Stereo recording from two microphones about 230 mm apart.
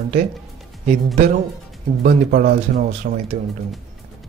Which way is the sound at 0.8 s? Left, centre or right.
Right.